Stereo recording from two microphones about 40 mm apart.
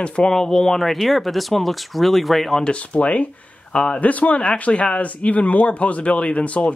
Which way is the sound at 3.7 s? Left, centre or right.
Left.